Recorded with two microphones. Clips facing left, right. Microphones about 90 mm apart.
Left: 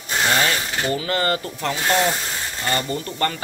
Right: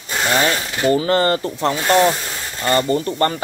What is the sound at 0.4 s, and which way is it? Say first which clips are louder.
Speech: right 3 dB; 30° right (ahead or behind).